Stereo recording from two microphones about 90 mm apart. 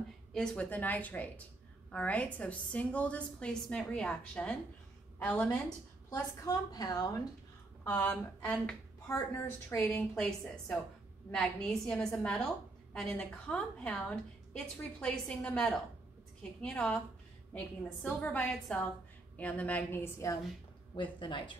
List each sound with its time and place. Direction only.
0.3 s a woman's voice: 10° left (ahead or behind)
6.4 s a woman's voice: 45° left (ahead or behind)
7.8 s a woman's voice: 20° left (ahead or behind)
9.0 s a woman's voice: 30° left (ahead or behind)
10.1 s a woman's voice: 10° left (ahead or behind)
18.0 s a woman's voice: 15° left (ahead or behind)
20.9 s speech: 60° left (ahead or behind)